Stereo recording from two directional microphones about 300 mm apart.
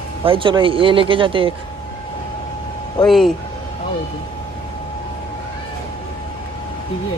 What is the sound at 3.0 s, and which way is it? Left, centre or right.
Speech, centre.